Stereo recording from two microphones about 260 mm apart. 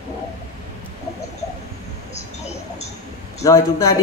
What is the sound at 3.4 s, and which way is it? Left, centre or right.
Speech, centre.